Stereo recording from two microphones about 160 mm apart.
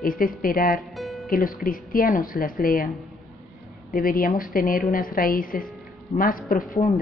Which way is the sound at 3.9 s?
65° left (ahead or behind).